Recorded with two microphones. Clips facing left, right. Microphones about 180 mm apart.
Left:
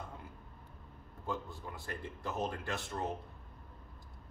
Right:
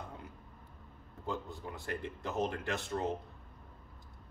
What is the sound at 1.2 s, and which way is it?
Speech, 20° right (ahead or behind).